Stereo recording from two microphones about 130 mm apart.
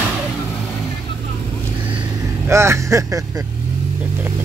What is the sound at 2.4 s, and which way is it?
Speech, 20° right (ahead or behind).